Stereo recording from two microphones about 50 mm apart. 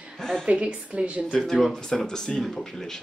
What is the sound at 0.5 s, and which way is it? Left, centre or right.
Speech, right.